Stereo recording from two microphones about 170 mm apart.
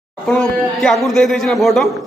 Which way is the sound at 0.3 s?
Centre (ahead or behind).